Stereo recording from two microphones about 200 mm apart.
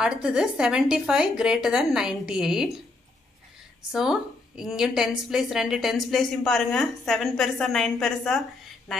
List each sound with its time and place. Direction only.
0.0 s a woman's voice: 5° right (ahead or behind)
3.9 s a woman's voice: centre (ahead or behind)